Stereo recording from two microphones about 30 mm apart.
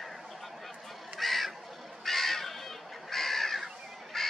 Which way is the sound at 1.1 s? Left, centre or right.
Centre.